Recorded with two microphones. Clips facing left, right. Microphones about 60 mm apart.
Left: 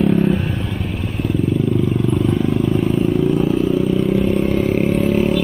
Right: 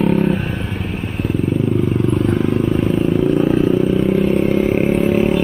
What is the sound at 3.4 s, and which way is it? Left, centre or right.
Vehicle, right.